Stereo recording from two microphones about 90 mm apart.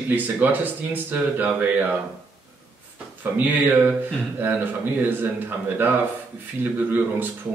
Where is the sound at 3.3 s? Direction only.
20° right (ahead or behind).